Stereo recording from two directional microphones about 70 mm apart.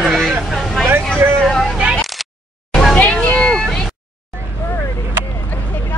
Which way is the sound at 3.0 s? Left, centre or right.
Centre.